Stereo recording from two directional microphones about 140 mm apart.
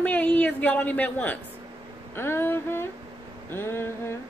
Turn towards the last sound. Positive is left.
turn(degrees=15)  # may be behind; listen again after turning